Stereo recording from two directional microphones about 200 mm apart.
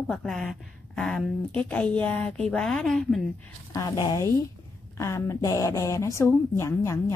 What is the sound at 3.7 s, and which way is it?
A woman's voice, 20° left (ahead or behind).